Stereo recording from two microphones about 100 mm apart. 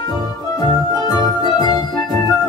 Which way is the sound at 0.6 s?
40° left (ahead or behind).